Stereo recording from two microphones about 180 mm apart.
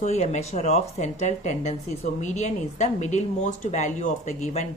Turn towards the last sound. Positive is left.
turn(degrees=40)  # may be behind; listen again after turning